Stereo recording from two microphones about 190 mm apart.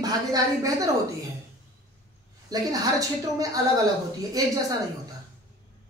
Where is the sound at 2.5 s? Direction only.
20° right (ahead or behind).